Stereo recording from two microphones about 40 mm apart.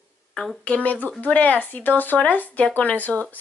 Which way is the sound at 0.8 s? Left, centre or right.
Left.